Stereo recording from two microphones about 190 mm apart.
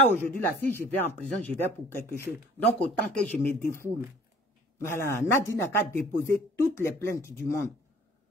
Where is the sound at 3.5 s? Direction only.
50° left (ahead or behind).